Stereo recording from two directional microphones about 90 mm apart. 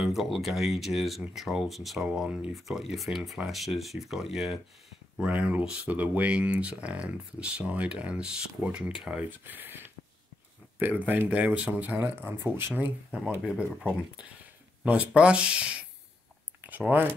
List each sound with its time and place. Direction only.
0.0 s speech: 5° right (ahead or behind)
2.0 s speech: 15° right (ahead or behind)
2.5 s speech: centre (ahead or behind)
5.2 s speech: 15° right (ahead or behind)
9.5 s speech: 20° right (ahead or behind)
13.5 s speech: 10° right (ahead or behind)